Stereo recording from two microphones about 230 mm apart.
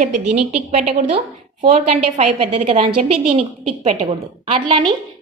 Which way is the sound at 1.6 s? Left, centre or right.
Right.